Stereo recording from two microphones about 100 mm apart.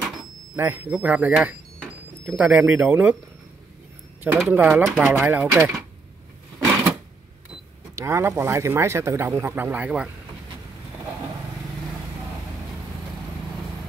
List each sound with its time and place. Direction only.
0.6 s speech: 20° right (ahead or behind)
4.2 s speech: 20° right (ahead or behind)
4.8 s speech: 5° right (ahead or behind)
5.3 s speech: 15° right (ahead or behind)
7.9 s speech: 30° right (ahead or behind); by 10.0 s 15° right (ahead or behind)